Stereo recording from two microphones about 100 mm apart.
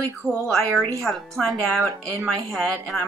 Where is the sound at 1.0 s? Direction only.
5° left (ahead or behind).